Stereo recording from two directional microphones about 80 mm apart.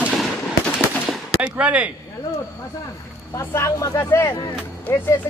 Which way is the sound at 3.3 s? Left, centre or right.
Left.